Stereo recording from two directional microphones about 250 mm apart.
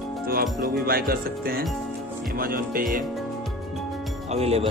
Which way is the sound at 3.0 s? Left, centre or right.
Centre.